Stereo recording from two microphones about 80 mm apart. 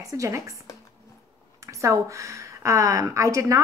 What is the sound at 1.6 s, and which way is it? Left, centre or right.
A woman's voice, right.